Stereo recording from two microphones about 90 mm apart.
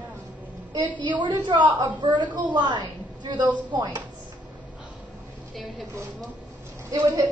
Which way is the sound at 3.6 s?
60° right (ahead or behind).